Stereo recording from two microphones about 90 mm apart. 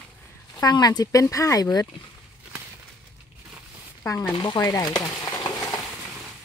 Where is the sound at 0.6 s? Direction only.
45° left (ahead or behind).